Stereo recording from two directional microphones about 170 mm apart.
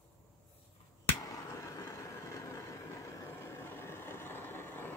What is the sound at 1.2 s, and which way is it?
Vehicle, 20° left (ahead or behind).